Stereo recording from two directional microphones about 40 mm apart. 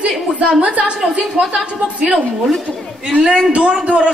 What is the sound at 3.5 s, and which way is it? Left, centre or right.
Speech, right.